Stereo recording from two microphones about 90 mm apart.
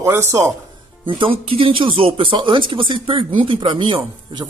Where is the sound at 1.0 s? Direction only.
80° right.